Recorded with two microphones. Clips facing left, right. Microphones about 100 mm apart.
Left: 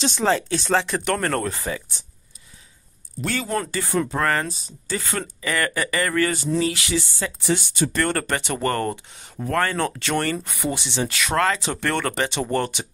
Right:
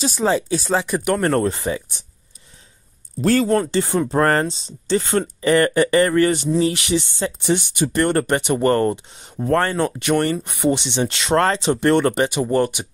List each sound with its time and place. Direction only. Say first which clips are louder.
0.2 s speech: right 3 dB; 15° right (ahead or behind)
3.2 s speech: right 9 dB; 35° right (ahead or behind)
3.7 s speech: right 4 dB; 20° right (ahead or behind)
4.1 s speech: right 6 dB; 35° right (ahead or behind)
11.6 s speech: right 8 dB; 20° right (ahead or behind)